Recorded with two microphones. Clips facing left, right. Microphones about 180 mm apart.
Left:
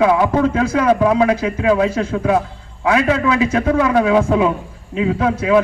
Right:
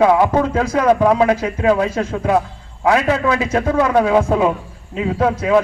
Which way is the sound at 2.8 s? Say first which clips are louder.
Even; 35° right (ahead or behind).